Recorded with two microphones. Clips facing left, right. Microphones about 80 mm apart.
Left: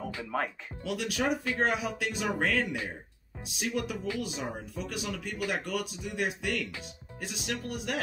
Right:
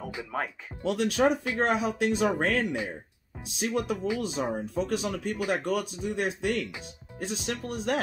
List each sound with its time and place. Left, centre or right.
0.3 s speech: centre
0.8 s speech: right